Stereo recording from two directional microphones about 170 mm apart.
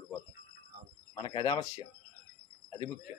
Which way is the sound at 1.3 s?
25° left (ahead or behind).